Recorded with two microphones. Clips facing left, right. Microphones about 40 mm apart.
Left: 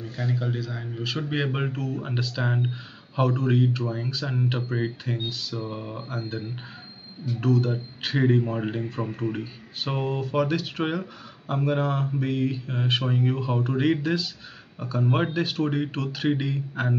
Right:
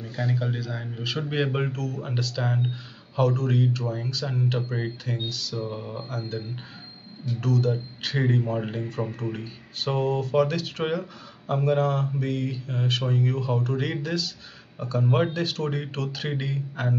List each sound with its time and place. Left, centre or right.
0.0 s speech: centre